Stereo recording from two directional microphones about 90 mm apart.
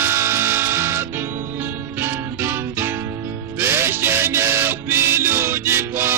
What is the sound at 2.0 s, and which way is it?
Music, 30° right (ahead or behind).